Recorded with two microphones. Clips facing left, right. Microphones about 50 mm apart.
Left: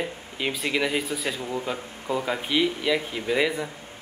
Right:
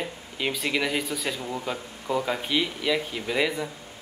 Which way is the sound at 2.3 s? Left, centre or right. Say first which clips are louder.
Left 2 dB; centre.